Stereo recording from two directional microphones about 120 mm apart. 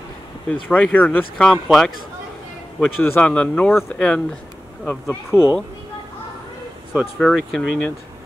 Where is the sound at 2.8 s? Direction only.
15° left (ahead or behind).